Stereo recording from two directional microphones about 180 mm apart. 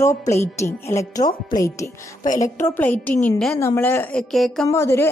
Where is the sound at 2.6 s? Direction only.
10° left (ahead or behind).